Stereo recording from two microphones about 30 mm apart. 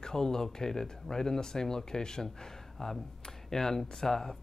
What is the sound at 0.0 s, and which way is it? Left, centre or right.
Speech, centre.